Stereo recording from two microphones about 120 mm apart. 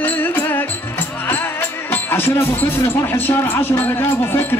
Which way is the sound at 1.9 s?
15° left (ahead or behind).